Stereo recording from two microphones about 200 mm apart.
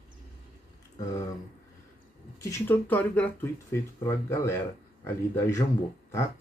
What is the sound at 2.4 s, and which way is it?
Speech, 10° left (ahead or behind).